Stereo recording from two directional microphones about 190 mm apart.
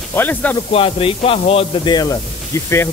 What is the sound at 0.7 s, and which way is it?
Speech, 30° left (ahead or behind).